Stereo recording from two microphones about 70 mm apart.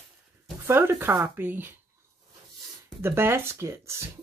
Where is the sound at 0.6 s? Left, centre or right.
Right.